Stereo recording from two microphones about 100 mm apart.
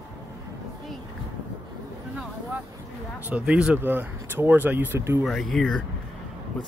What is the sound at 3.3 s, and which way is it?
Speech, 10° right (ahead or behind).